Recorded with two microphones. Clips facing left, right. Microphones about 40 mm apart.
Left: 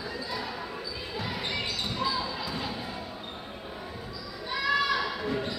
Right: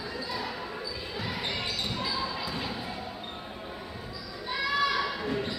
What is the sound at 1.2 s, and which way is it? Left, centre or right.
Basketball bounce, centre.